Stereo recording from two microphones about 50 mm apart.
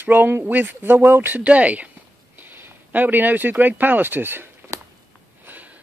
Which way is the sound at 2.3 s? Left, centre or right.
Right.